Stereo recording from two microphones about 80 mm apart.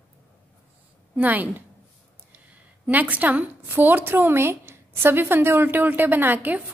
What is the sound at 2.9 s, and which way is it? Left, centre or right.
A woman's voice, right.